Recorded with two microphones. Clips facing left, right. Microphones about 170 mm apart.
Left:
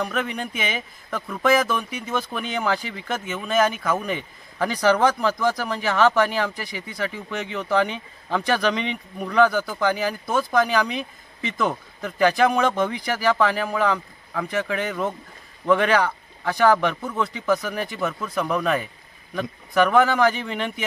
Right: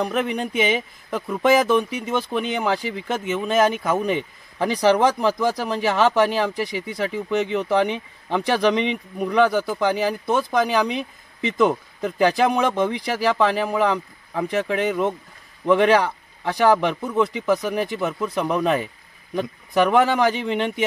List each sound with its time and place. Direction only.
0.0 s speech: 25° right (ahead or behind)